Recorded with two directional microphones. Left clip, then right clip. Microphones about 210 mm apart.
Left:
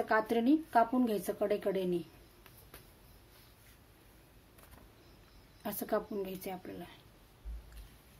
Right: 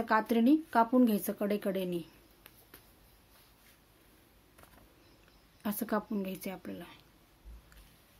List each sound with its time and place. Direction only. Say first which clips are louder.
0.0 s speech: right 2 dB; 55° right (ahead or behind)
5.6 s a woman's voice: even; 55° right (ahead or behind)